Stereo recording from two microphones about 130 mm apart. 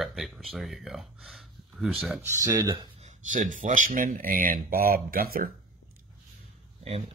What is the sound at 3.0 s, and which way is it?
Speech, 70° right (ahead or behind).